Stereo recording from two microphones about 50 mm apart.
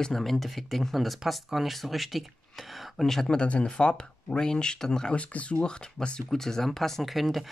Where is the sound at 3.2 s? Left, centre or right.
Left.